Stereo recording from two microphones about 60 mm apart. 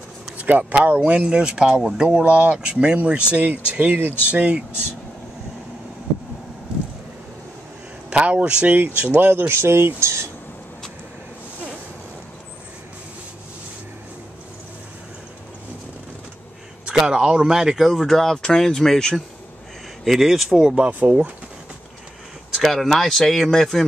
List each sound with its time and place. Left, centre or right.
0.4 s speech: right
8.1 s speech: centre
9.1 s speech: right
16.8 s speech: centre
20.1 s speech: centre; by 21.3 s right
22.5 s speech: centre